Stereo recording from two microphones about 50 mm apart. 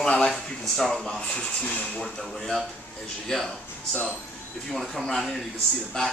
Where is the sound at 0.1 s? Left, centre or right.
Centre.